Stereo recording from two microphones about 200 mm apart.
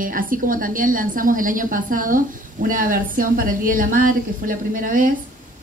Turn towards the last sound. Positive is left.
turn(degrees=-45)  # may be behind; listen again after turning